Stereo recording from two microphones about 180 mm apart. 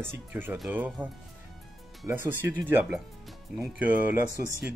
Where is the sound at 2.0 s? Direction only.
10° right (ahead or behind).